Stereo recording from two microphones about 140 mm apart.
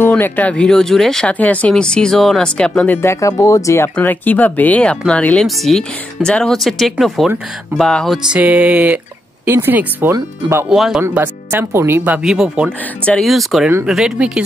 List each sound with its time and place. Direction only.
0.0 s speech: 15° left (ahead or behind)
3.0 s speech: 20° left (ahead or behind); by 8.2 s centre (ahead or behind)
8.3 s speech: 10° right (ahead or behind)
10.7 s speech: 5° right (ahead or behind)
11.7 s speech: 15° right (ahead or behind)
12.6 s speech: 5° left (ahead or behind)